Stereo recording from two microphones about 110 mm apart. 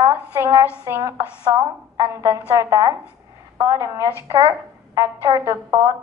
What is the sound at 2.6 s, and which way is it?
A woman's voice, 35° right (ahead or behind).